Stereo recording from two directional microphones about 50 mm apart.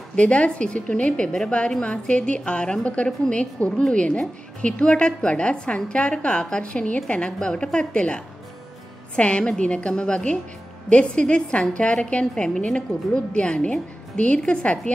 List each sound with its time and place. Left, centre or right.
0.1 s a woman's voice: left